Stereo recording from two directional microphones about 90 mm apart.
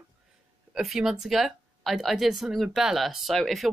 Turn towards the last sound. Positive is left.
turn(degrees=0)  # may be behind; listen again after turning